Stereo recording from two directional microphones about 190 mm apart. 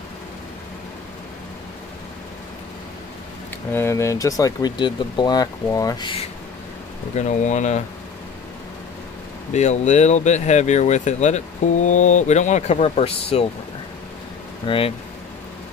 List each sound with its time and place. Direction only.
3.7 s speech: 15° left (ahead or behind)
7.2 s speech: 40° left (ahead or behind)
9.5 s speech: 40° left (ahead or behind)
14.7 s speech: 25° left (ahead or behind)